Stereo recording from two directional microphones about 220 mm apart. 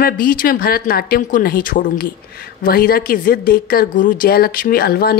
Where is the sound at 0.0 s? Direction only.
40° left (ahead or behind).